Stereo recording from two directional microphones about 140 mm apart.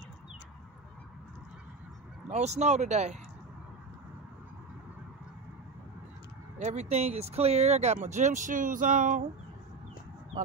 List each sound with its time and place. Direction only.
2.2 s speech: 55° right (ahead or behind)
6.6 s speech: 55° right (ahead or behind)